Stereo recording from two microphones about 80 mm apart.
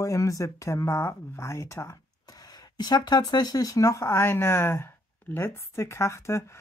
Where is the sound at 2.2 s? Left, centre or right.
Left.